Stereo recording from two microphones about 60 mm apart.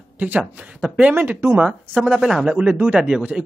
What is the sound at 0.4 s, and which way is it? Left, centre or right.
Speech, centre.